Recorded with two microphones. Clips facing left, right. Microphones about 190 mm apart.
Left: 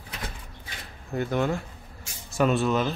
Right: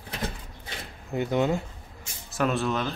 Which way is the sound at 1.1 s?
15° right (ahead or behind).